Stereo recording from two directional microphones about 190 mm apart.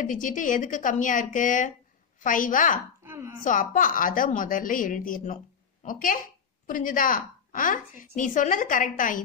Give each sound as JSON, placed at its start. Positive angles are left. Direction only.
{"t": 0.0, "sound": "a woman's voice", "side_deg": 45}
{"t": 3.0, "sound": "a sound", "side_deg": -10}
{"t": 3.4, "sound": "a woman's voice", "side_deg": 45}